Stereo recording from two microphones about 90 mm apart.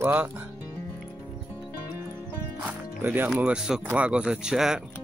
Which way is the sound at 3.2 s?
10° right (ahead or behind).